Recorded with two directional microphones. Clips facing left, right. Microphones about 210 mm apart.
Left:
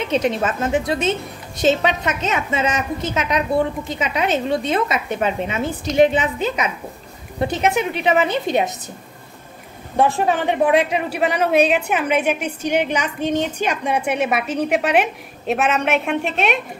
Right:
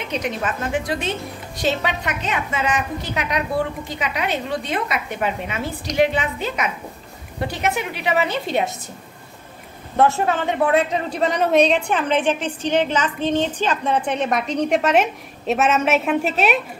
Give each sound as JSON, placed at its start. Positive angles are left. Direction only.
{"t": 0.1, "sound": "a woman's voice", "side_deg": 25}
{"t": 9.9, "sound": "a man's voice", "side_deg": 15}